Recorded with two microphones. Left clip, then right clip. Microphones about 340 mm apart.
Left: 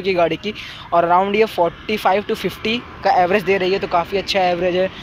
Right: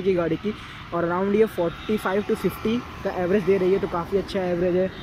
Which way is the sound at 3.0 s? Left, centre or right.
Left.